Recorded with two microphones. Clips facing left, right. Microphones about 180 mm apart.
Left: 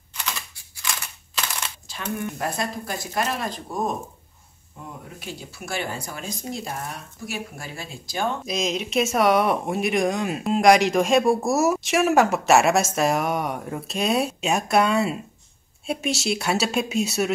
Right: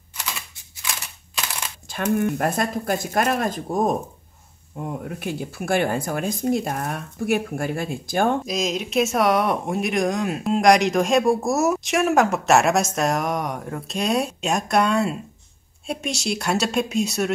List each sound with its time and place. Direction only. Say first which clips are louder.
2.1 s speech: right 5 dB; 50° right (ahead or behind)
8.5 s speech: right 1 dB; centre (ahead or behind)